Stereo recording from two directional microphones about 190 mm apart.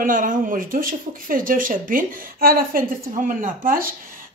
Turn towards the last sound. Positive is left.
turn(degrees=-45)  # may be behind; listen again after turning